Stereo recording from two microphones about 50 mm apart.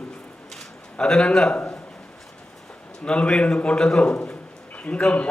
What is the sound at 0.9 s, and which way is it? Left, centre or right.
Speech, centre.